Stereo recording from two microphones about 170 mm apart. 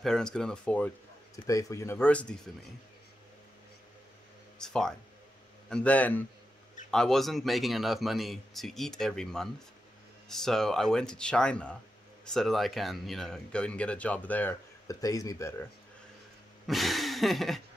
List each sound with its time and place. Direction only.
0.0 s speech: 5° left (ahead or behind)
1.3 s speech: 20° left (ahead or behind)
4.6 s speech: 5° left (ahead or behind)
14.9 s speech: 20° left (ahead or behind)
16.6 s a sound: centre (ahead or behind)